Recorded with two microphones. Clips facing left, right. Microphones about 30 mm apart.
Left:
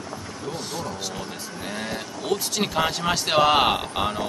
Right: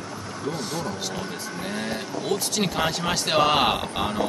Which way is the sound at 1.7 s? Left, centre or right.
Centre.